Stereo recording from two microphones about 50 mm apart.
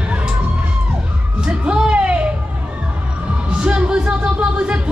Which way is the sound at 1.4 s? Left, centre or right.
Centre.